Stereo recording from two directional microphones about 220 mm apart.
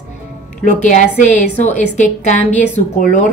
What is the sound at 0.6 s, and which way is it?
A woman's voice, 35° left (ahead or behind).